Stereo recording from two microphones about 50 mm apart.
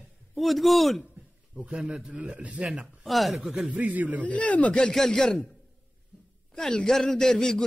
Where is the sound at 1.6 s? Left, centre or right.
Right.